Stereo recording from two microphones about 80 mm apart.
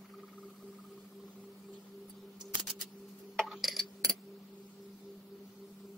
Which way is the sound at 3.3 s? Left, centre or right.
Centre.